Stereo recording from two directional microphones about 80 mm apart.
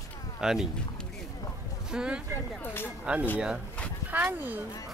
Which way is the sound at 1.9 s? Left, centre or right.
Centre.